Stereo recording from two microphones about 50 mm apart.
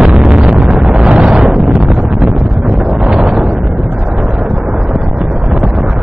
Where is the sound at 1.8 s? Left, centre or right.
Centre.